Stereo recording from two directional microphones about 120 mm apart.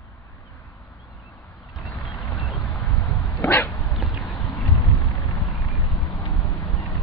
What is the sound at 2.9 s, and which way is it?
Dog, 15° left (ahead or behind).